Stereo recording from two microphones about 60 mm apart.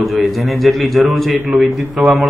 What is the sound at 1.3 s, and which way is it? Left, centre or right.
Speech, right.